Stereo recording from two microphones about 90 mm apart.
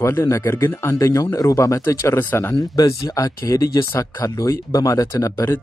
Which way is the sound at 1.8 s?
25° left (ahead or behind).